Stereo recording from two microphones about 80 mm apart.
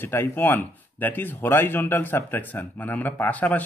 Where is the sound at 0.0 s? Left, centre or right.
Left.